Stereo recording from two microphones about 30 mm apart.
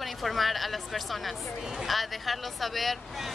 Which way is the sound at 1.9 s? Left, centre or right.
Centre.